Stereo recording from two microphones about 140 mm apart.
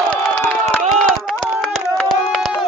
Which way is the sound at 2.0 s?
5° left (ahead or behind).